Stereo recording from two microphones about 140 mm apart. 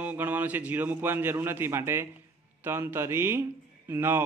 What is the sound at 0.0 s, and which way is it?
A man's voice, 15° right (ahead or behind).